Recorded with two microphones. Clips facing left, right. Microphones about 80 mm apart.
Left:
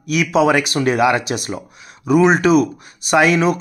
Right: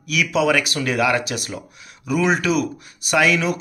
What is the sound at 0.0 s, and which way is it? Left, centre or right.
Speech, left.